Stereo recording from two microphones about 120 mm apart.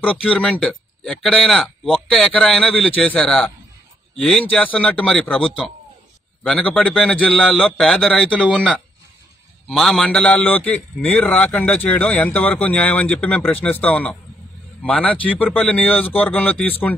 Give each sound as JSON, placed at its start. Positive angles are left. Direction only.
{"t": 0.0, "sound": "a man's voice", "side_deg": 10}
{"t": 6.4, "sound": "a man's voice", "side_deg": 10}